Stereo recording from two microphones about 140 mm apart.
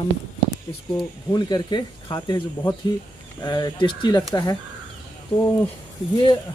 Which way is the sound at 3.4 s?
30° left (ahead or behind).